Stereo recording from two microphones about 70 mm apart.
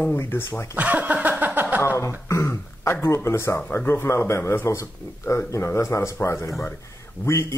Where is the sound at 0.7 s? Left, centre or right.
Right.